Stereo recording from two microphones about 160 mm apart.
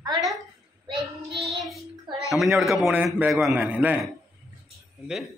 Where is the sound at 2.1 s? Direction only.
30° right (ahead or behind).